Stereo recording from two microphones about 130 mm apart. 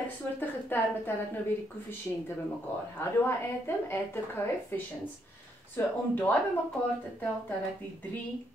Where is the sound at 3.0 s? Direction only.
15° left (ahead or behind).